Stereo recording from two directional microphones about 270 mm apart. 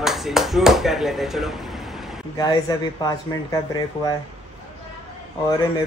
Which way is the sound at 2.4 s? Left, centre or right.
Centre.